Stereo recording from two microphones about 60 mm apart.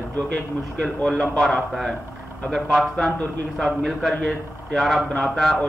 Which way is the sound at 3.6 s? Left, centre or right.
Centre.